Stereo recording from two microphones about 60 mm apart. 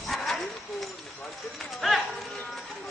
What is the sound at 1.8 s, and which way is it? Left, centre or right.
Run, centre.